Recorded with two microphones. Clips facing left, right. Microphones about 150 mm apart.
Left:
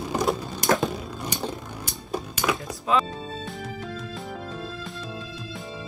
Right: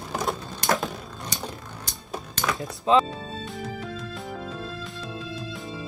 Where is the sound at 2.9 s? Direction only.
25° right (ahead or behind).